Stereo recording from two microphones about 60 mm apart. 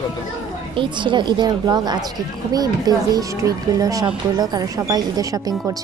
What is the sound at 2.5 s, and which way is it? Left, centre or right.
Speech, right.